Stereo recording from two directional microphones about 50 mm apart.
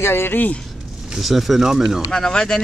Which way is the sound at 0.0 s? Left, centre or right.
Left.